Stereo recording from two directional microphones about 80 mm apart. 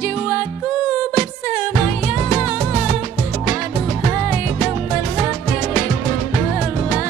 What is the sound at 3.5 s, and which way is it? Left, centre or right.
Music, centre.